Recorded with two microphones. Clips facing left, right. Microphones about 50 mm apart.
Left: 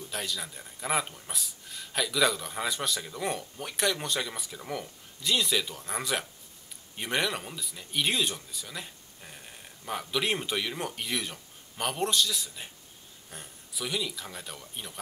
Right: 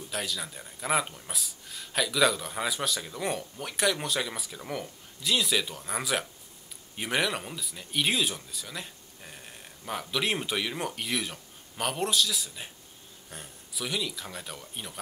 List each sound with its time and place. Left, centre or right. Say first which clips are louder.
0.1 s speech: right 2 dB; centre